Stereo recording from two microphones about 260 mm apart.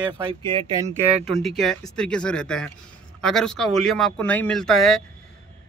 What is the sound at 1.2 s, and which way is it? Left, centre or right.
A man's voice, centre.